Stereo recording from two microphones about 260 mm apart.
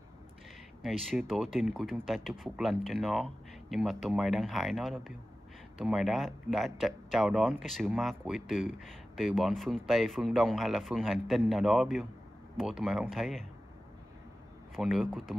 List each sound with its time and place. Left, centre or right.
0.8 s speech: centre
14.8 s speech: centre